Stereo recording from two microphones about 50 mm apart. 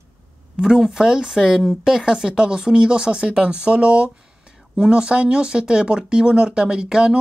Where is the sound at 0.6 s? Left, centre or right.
Centre.